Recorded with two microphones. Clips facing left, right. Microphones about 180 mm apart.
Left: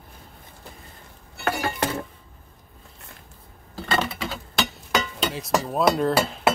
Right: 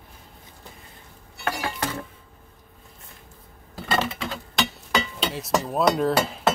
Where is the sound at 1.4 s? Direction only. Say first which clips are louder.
Left 3 dB; 60° left (ahead or behind).